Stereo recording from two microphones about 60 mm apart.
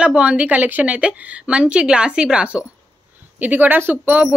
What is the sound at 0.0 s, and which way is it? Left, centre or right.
A woman's voice, centre.